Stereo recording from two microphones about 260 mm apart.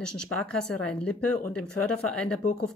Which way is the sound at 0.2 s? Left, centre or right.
Centre.